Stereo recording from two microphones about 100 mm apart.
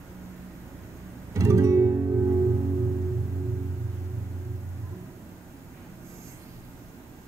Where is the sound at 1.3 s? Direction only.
30° right (ahead or behind).